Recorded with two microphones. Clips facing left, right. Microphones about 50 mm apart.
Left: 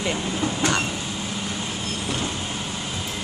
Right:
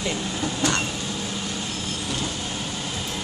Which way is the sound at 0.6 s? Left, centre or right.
Centre.